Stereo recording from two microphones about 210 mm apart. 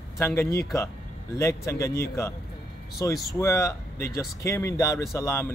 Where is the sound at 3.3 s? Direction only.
15° left (ahead or behind).